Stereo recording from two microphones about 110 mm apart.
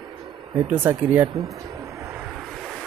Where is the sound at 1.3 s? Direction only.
30° right (ahead or behind).